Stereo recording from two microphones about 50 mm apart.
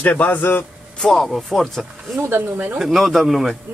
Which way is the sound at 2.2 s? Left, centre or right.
Right.